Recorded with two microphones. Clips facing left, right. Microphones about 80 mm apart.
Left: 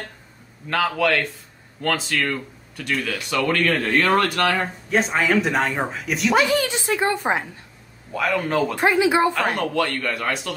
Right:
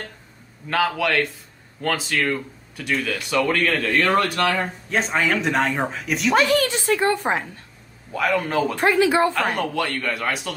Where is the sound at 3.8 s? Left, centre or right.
Left.